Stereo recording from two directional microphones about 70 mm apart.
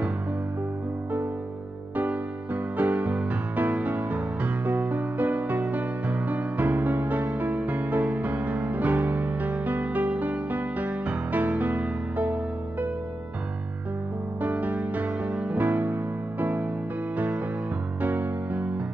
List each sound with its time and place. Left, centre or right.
2.0 s music: right
11.7 s music: centre
14.4 s music: right
18.0 s music: right